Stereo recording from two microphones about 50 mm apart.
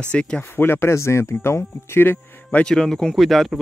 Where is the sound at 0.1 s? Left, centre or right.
Centre.